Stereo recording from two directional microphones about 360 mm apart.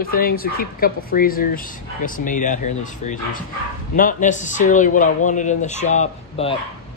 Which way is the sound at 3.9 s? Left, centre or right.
Left.